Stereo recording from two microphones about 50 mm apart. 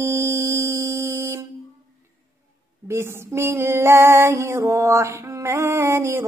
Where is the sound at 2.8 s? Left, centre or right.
Right.